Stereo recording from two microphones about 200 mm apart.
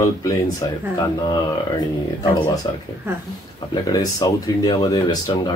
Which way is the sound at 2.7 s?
20° left (ahead or behind).